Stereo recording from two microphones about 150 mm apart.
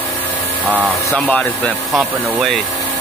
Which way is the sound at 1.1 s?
10° left (ahead or behind).